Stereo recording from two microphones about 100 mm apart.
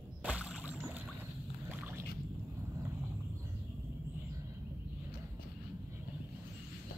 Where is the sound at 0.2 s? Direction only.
15° right (ahead or behind).